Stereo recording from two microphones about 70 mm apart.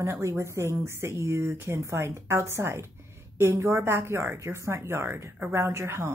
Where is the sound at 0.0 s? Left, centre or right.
Right.